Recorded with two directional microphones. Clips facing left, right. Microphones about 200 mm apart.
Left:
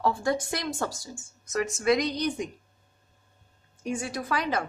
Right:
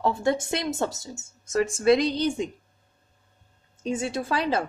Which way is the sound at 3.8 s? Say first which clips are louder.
Right 4 dB; 25° right (ahead or behind).